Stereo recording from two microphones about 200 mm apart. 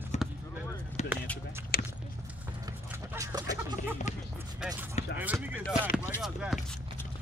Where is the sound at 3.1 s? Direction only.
15° right (ahead or behind).